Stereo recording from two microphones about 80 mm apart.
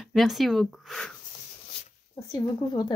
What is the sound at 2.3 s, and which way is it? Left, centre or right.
Speech, left.